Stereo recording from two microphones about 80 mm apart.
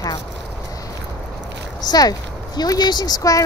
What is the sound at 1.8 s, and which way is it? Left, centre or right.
Speech, left.